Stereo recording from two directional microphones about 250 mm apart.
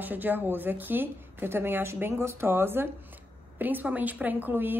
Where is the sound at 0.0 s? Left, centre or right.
Centre.